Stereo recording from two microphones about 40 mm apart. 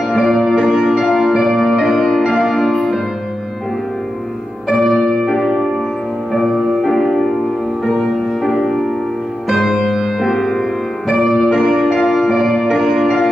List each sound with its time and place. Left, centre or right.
0.1 s music: centre
4.6 s music: centre